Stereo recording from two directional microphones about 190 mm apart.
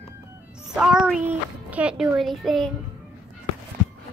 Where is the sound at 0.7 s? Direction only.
5° right (ahead or behind).